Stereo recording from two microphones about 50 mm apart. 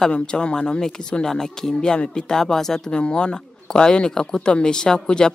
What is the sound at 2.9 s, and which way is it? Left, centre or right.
Speech, left.